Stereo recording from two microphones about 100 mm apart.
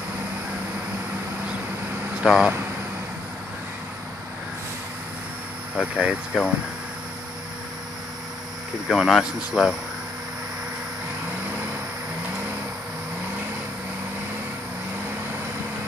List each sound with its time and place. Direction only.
2.2 s speech: 5° right (ahead or behind)
5.8 s speech: 10° right (ahead or behind)
8.8 s speech: 5° right (ahead or behind)